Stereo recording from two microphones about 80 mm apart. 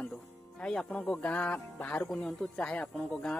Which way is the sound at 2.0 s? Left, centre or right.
Centre.